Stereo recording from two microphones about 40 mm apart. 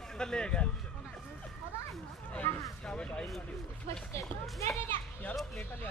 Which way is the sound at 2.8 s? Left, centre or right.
Left.